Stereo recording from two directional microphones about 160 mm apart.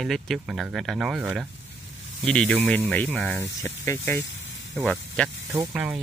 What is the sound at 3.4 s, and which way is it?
Speech, 20° left (ahead or behind).